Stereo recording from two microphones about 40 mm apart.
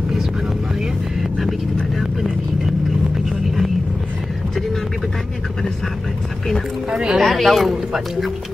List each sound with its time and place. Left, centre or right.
6.9 s speech: centre
7.2 s speech: centre